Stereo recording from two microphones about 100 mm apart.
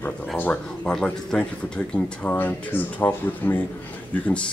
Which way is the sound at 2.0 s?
20° left (ahead or behind).